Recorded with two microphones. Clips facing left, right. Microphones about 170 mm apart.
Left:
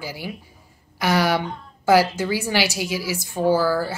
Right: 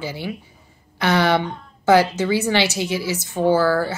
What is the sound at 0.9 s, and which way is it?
A woman's voice, 10° left (ahead or behind).